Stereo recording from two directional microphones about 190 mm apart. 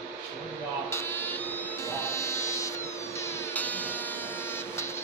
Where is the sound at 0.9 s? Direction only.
10° left (ahead or behind).